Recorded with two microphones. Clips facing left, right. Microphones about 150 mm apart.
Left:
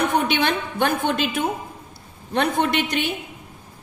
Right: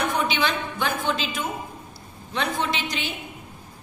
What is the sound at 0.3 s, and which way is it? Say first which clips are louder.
A woman's voice: left 3 dB; 60° left (ahead or behind).